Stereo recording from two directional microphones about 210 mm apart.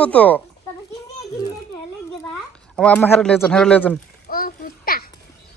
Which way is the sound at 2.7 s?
5° left (ahead or behind).